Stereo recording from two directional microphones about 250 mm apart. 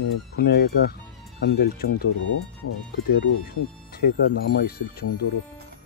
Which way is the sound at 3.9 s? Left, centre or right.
Left.